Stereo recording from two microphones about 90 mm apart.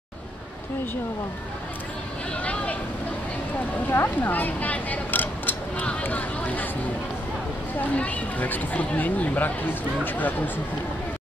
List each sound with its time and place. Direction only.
2.4 s vehicle: 15° left (ahead or behind)
3.9 s a sound: 25° left (ahead or behind)
7.9 s speech: 15° left (ahead or behind)